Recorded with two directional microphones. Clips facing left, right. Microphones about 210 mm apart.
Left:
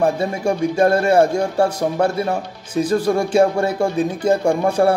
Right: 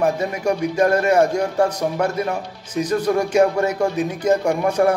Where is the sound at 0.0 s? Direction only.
30° left (ahead or behind).